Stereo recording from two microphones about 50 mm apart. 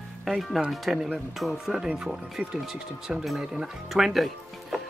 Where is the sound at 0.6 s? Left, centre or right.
Centre.